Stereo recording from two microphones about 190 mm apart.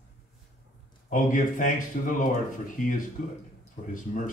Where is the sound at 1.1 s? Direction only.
45° left (ahead or behind).